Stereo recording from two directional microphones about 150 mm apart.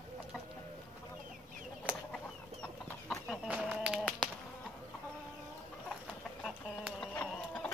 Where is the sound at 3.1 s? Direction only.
Centre (ahead or behind).